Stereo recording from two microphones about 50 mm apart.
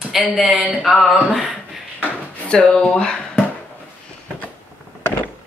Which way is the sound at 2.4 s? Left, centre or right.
Left.